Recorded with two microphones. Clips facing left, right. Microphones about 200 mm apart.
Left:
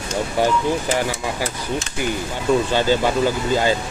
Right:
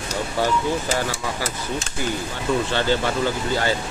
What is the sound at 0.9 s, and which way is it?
Speech, 15° left (ahead or behind).